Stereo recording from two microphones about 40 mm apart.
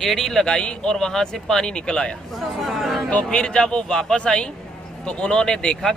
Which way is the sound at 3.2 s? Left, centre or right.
Left.